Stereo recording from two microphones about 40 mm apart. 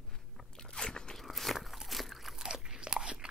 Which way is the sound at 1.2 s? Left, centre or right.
Centre.